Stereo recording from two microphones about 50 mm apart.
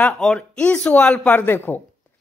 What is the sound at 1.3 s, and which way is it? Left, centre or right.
Speech, left.